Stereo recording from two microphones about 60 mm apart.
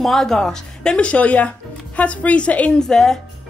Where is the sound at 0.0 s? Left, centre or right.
Centre; by 2.7 s left.